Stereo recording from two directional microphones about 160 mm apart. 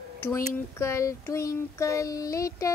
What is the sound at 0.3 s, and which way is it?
Child singing, 15° left (ahead or behind).